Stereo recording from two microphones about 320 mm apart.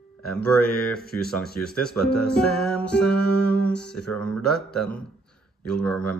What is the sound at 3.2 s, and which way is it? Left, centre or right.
Music, left.